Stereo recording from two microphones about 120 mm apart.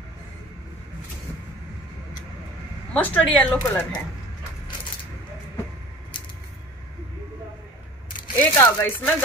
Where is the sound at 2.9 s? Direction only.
10° left (ahead or behind).